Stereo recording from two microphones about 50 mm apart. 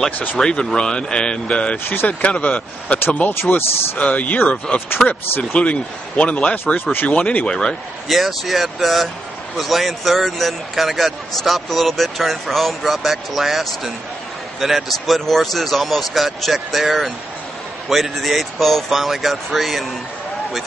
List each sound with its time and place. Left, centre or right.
0.4 s speech: centre
1.9 s speech: left
2.2 s speech: left
3.3 s speech: left
4.0 s speech: left
5.4 s speech: left
6.9 s speech: left
7.2 s speech: left
8.1 s a man's voice: centre